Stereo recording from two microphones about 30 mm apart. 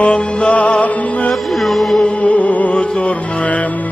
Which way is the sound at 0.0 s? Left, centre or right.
Left.